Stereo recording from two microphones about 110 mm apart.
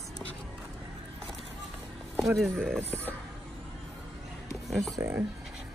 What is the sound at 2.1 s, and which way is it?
Speech, centre (ahead or behind).